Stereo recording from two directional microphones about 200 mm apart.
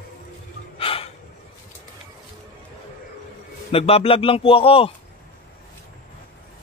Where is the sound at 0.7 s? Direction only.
25° left (ahead or behind).